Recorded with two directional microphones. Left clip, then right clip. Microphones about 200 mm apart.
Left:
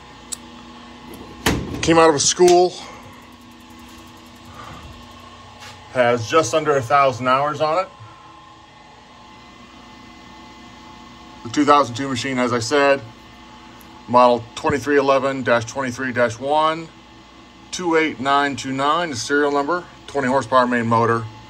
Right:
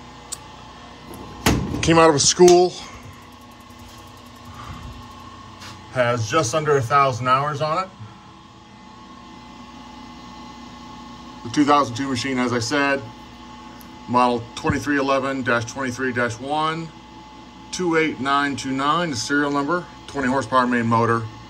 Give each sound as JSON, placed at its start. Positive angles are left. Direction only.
{"t": 1.4, "sound": "speech", "side_deg": -15}
{"t": 5.9, "sound": "a man's voice", "side_deg": -5}
{"t": 11.5, "sound": "speech", "side_deg": -10}
{"t": 14.1, "sound": "speech", "side_deg": -10}